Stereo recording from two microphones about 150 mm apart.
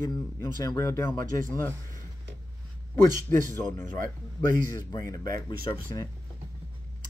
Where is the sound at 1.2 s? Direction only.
65° right (ahead or behind).